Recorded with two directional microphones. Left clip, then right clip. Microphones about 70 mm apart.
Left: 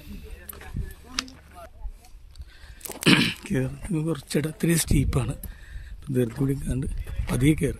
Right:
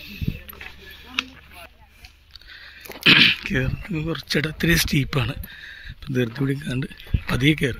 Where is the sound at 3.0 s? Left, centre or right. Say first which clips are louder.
Right 7 dB; left.